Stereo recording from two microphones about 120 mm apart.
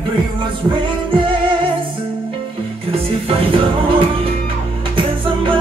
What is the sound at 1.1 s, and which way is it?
Music, 45° right (ahead or behind).